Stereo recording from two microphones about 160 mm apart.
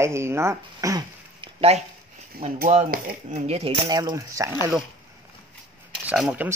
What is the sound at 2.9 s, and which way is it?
Speech, 55° right (ahead or behind).